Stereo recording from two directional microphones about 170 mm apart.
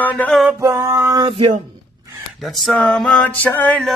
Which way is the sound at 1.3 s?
30° right (ahead or behind).